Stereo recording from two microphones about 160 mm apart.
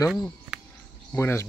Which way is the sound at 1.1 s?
15° left (ahead or behind).